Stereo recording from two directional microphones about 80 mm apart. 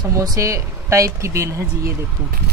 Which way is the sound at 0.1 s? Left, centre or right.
Right.